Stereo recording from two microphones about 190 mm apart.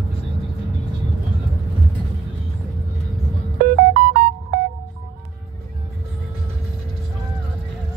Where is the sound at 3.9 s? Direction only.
45° right (ahead or behind).